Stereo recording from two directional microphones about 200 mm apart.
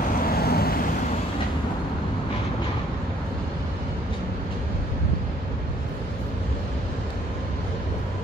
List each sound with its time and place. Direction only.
0.3 s vehicle: 50° left (ahead or behind)